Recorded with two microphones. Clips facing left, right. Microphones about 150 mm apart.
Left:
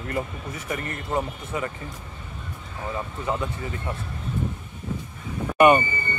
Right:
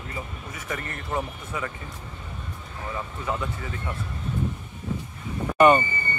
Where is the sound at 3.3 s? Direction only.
25° left (ahead or behind).